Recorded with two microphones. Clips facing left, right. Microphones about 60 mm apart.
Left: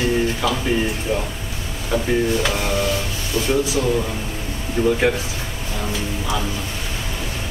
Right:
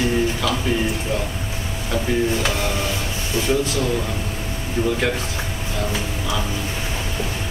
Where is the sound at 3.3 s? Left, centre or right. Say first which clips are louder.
Left 1 dB; right.